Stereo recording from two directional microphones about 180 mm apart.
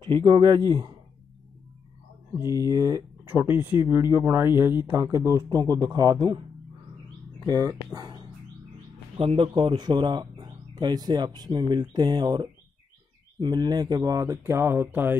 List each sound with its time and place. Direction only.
0.0 s speech: 30° right (ahead or behind)
2.4 s speech: 20° left (ahead or behind)
2.7 s speech: 20° right (ahead or behind)